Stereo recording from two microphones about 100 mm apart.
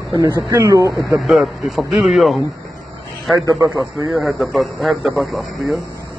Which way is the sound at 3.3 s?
35° right (ahead or behind).